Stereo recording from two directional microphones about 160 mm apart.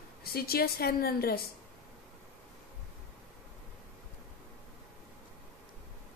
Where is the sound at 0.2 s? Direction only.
75° left (ahead or behind).